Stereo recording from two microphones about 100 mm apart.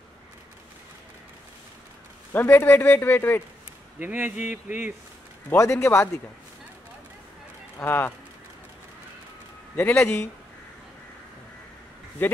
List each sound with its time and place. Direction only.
2.3 s a man's voice: 20° left (ahead or behind)
4.0 s speech: 20° right (ahead or behind)
5.6 s a man's voice: 30° left (ahead or behind)
7.8 s a man's voice: 20° left (ahead or behind)
9.8 s a man's voice: 20° left (ahead or behind)
12.2 s a man's voice: 20° left (ahead or behind)